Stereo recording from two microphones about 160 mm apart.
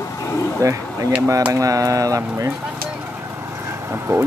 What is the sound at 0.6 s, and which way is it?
Speech, 20° right (ahead or behind).